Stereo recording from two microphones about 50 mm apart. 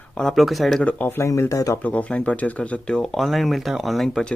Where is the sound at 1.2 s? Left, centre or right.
Left.